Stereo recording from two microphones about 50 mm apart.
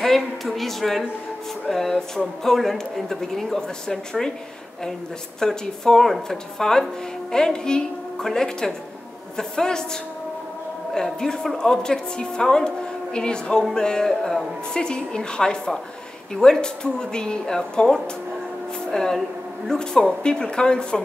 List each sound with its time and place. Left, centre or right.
0.0 s a woman's voice: centre
5.4 s a woman's voice: centre
10.9 s a woman's voice: centre